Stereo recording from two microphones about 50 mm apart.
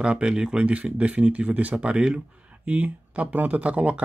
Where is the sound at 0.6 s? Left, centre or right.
Right.